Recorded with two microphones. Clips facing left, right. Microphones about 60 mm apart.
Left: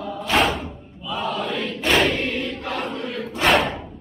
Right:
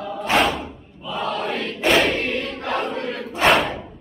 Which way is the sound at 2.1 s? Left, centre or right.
Right.